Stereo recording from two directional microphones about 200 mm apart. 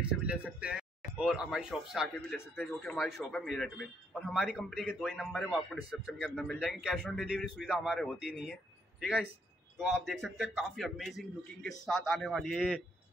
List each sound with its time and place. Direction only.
0.0 s speech: 5° right (ahead or behind)
10.0 s speech: centre (ahead or behind)